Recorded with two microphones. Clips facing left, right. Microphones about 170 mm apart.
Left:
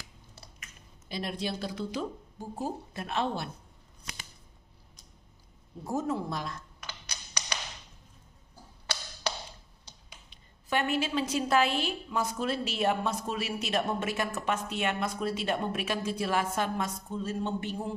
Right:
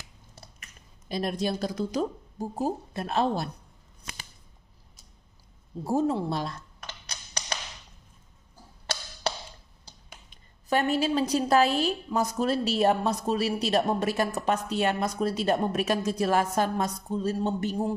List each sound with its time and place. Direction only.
0.6 s speech: 45° right (ahead or behind)
5.9 s a woman's voice: 30° right (ahead or behind)
10.0 s a woman's voice: 45° right (ahead or behind)